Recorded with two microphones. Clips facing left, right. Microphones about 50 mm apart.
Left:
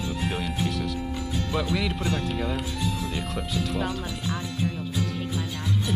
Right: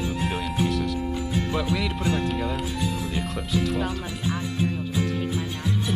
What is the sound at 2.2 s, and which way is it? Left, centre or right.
Speech, centre.